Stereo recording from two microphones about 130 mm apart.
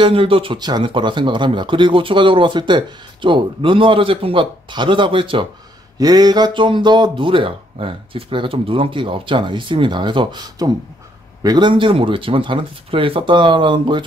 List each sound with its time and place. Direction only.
0.0 s speech: 45° right (ahead or behind)
5.9 s speech: 30° right (ahead or behind)